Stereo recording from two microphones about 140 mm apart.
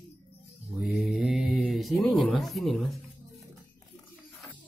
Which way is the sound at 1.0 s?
Centre (ahead or behind).